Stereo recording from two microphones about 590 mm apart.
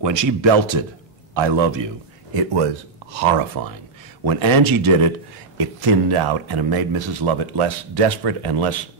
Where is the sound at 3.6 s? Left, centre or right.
Right.